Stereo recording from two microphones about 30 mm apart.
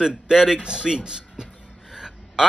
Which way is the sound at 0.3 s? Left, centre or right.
Right.